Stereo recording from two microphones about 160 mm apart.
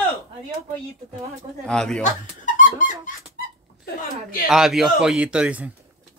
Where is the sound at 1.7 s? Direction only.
5° left (ahead or behind).